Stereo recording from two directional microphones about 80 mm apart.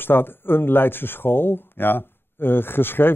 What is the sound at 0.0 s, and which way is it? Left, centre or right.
Speech, left.